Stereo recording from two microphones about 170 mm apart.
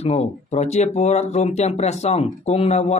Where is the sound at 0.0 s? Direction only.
40° left (ahead or behind).